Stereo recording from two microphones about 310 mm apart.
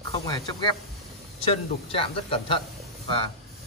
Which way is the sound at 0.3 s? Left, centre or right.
Centre.